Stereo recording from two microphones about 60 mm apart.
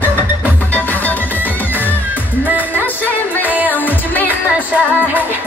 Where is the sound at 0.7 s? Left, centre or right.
Left.